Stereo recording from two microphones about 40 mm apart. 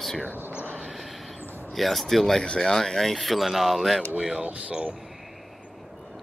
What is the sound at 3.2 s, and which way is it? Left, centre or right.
Speech, centre.